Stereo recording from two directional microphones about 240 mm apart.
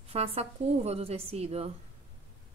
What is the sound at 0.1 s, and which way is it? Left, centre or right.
A woman's voice, right.